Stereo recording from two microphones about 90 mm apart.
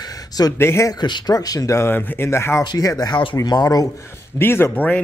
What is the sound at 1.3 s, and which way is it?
Speech, 40° left (ahead or behind).